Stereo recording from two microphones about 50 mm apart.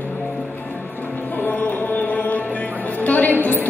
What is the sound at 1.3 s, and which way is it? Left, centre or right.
Music, left.